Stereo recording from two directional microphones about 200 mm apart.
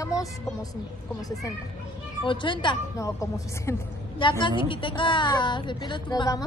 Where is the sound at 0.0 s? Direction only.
15° left (ahead or behind).